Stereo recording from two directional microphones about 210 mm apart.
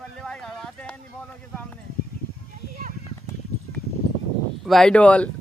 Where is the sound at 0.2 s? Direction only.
Centre (ahead or behind).